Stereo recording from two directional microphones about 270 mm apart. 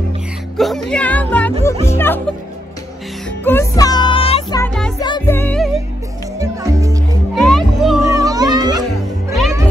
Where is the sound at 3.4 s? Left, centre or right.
Centre.